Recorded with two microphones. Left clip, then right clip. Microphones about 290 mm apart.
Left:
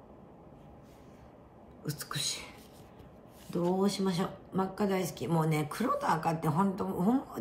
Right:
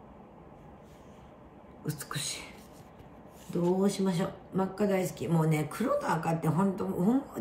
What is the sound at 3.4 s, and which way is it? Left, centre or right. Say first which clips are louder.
A woman's voice: right 2 dB; centre.